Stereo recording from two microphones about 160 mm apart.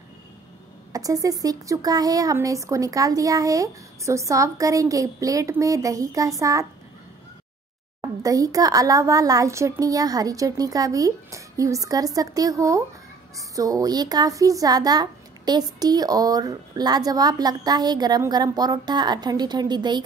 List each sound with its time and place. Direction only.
0.9 s a child's voice: 20° right (ahead or behind)
8.2 s a child's voice: 20° right (ahead or behind)